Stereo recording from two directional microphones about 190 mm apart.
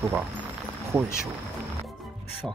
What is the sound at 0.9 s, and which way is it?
Speech, 20° right (ahead or behind).